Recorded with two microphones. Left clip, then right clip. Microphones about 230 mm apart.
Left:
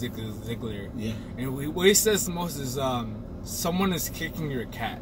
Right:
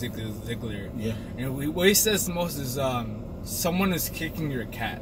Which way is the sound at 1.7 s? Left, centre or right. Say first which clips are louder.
Left 1 dB; centre.